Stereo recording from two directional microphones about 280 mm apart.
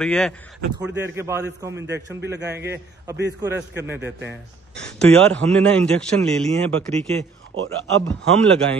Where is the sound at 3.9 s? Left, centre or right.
Right.